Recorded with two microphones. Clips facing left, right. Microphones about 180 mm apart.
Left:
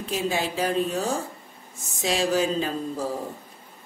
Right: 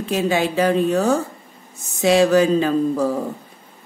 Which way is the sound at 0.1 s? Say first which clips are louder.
Right 7 dB; 70° right (ahead or behind).